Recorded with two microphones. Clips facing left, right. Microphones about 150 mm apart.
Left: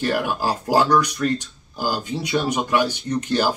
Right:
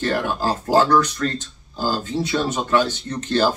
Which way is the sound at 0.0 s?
10° left (ahead or behind).